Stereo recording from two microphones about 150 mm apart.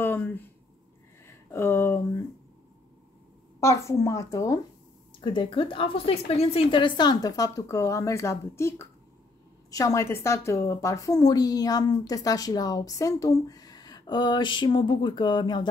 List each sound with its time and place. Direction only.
0.0 s a sound: 15° left (ahead or behind)
3.6 s a woman's voice: 20° left (ahead or behind)
5.2 s a woman's voice: 35° left (ahead or behind)